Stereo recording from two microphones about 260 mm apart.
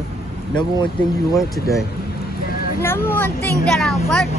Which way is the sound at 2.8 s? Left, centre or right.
Centre.